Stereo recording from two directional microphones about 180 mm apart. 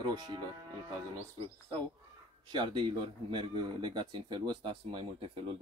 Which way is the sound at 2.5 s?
25° right (ahead or behind).